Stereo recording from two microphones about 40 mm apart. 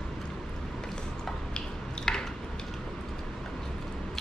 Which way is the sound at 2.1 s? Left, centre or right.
Left.